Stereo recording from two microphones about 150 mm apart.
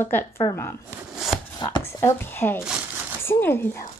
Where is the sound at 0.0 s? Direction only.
15° left (ahead or behind).